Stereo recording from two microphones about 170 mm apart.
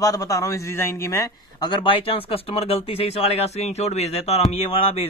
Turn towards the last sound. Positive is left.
turn(degrees=35)  # may be behind; listen again after turning